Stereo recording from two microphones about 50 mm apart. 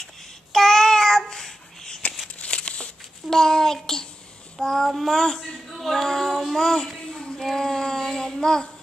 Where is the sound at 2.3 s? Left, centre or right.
Left.